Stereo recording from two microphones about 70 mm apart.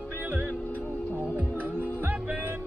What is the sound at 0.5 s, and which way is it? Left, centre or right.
Music, left.